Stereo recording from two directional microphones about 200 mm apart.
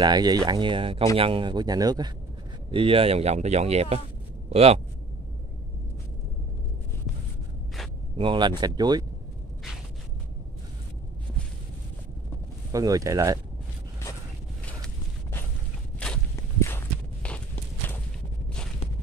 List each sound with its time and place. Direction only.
0.0 s speech: 20° right (ahead or behind)
8.2 s speech: 25° right (ahead or behind)
12.7 s speech: 15° right (ahead or behind)
16.0 s walk: 10° left (ahead or behind)